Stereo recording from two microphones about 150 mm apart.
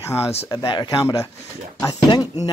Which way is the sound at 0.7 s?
25° left (ahead or behind).